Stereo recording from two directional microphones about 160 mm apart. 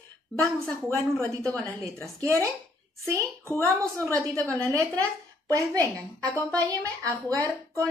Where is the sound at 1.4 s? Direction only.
10° left (ahead or behind).